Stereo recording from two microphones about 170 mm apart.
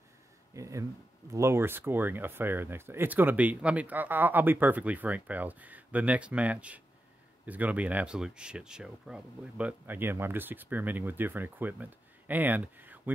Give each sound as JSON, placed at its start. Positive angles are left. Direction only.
{"t": 0.6, "sound": "speech", "side_deg": -20}